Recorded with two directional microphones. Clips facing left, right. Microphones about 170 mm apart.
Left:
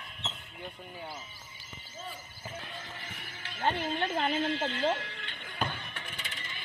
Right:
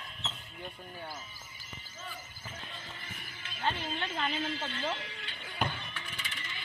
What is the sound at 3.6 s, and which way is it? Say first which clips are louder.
Speech: left 4 dB; 50° left (ahead or behind).